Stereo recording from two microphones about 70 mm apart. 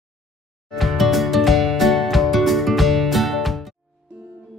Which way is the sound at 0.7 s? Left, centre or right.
Centre.